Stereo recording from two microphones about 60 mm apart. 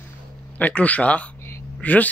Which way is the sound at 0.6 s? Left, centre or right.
Left.